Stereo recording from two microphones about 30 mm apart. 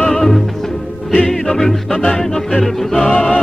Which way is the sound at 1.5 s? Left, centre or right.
Centre.